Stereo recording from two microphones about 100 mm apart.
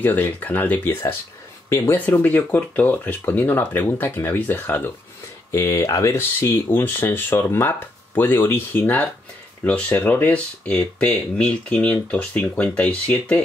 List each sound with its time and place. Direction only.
0.0 s speech: 20° left (ahead or behind)